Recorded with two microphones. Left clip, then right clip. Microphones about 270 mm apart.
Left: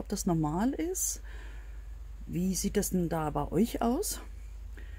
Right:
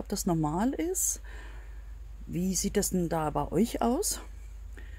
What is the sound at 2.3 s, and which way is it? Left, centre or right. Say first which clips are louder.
Speech: right 2 dB; centre.